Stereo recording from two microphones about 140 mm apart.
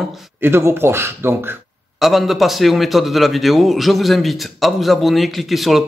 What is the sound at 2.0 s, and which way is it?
Speech, centre (ahead or behind).